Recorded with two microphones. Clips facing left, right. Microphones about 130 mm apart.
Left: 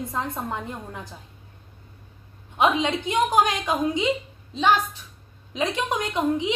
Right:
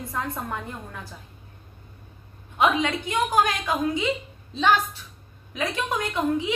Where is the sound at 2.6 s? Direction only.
20° left (ahead or behind).